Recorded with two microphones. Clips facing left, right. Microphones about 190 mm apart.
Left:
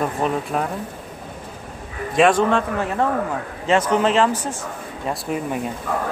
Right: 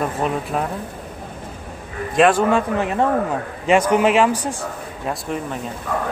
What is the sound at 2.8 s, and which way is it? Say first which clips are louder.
Speech: right 2 dB; 20° right (ahead or behind).